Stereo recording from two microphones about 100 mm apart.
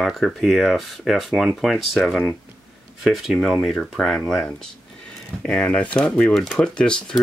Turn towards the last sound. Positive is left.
turn(degrees=10)  # may be behind; listen again after turning